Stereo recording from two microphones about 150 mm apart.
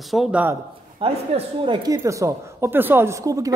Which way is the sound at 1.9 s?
20° right (ahead or behind).